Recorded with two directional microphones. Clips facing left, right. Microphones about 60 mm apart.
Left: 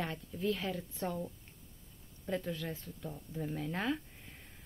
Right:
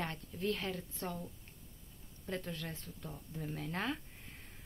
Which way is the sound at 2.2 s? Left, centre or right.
Centre.